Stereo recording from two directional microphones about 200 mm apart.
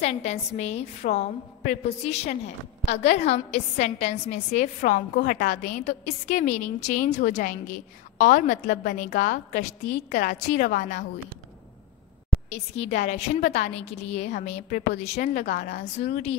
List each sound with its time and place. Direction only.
0.0 s a woman's voice: 35° left (ahead or behind)
12.4 s a woman's voice: 30° left (ahead or behind); by 16.1 s 55° left (ahead or behind)
16.1 s a woman's voice: 30° left (ahead or behind)